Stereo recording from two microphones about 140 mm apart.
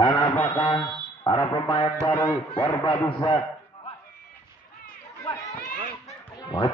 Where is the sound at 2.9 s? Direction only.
30° left (ahead or behind).